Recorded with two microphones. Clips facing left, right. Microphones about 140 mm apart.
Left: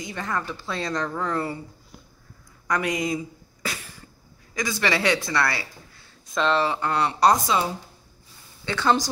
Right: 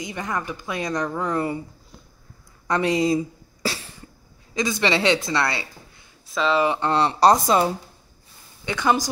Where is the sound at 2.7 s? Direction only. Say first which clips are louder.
Right 5 dB; 30° right (ahead or behind).